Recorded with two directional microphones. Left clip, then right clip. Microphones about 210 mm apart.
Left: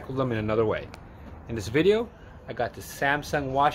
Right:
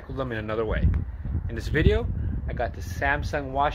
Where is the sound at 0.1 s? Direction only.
5° left (ahead or behind).